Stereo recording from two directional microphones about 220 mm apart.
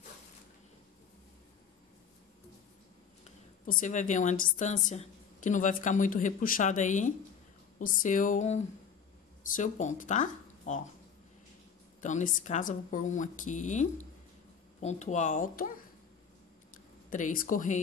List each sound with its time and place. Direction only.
3.6 s a woman's voice: 35° left (ahead or behind)
12.0 s a woman's voice: 35° left (ahead or behind)
17.1 s a woman's voice: 35° left (ahead or behind)